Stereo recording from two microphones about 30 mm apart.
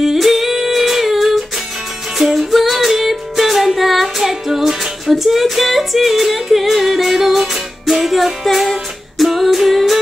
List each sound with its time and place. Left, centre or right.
0.0 s humming: centre
2.1 s music: centre
5.0 s music: centre
9.2 s a sound: centre